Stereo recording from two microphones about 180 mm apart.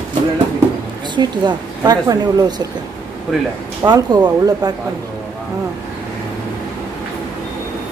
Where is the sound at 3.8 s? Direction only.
20° right (ahead or behind).